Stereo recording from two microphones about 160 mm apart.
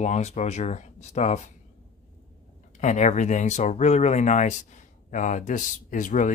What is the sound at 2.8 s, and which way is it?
Speech, 45° left (ahead or behind).